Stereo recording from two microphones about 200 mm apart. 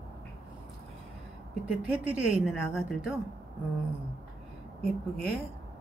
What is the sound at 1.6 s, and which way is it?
Speech, 5° right (ahead or behind).